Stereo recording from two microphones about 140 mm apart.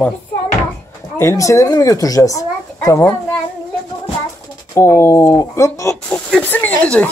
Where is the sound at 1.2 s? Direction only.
20° left (ahead or behind).